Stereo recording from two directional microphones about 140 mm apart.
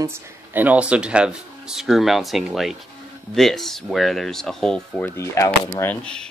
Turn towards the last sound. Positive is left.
turn(degrees=5)  # may be behind; listen again after turning